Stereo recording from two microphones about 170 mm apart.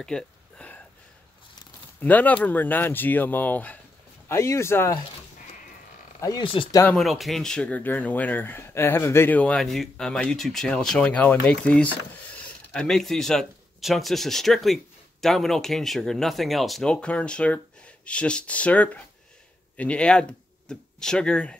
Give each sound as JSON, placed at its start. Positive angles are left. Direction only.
{"t": 0.0, "sound": "a sound", "side_deg": 5}
{"t": 2.0, "sound": "speech", "side_deg": 10}
{"t": 6.2, "sound": "speech", "side_deg": 25}
{"t": 6.8, "sound": "speech", "side_deg": 5}